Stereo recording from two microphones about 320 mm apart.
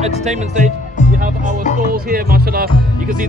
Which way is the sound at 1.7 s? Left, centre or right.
Right.